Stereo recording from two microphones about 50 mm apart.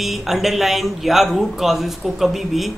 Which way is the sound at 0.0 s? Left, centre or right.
Centre.